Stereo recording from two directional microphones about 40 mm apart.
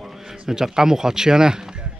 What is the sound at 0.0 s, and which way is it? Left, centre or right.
Speech, centre.